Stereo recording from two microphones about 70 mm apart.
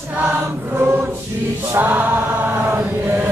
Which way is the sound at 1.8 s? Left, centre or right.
Right.